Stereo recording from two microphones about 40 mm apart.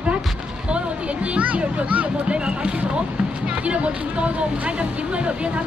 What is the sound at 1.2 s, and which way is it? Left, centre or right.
Speech, right.